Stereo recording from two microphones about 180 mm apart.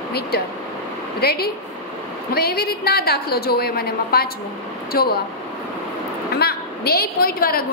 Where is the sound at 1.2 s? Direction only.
60° left (ahead or behind).